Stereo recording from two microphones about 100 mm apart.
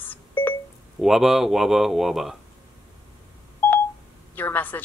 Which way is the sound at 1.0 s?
5° right (ahead or behind).